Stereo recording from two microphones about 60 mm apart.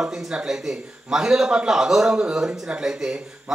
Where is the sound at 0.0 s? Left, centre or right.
Centre.